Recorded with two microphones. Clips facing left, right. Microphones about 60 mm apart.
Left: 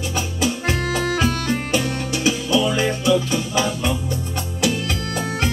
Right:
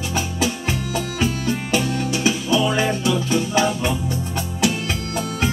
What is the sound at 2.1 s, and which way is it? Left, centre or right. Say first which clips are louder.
Music: left 1 dB; right.